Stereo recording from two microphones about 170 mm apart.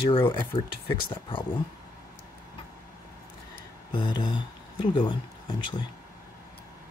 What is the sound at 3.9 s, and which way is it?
Speech, 25° left (ahead or behind).